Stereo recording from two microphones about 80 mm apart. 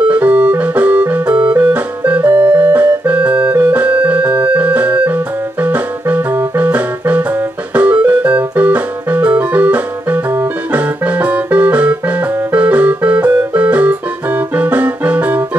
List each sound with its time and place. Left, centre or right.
0.1 s music: centre
2.2 s organ: right
4.6 s music: centre
7.7 s keyboard: centre